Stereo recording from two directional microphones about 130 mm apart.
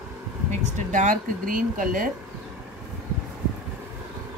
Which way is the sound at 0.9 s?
70° right (ahead or behind).